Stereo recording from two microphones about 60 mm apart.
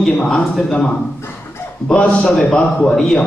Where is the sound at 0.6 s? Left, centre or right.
Centre.